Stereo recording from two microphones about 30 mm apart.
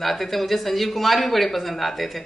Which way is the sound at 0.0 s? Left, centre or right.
Centre.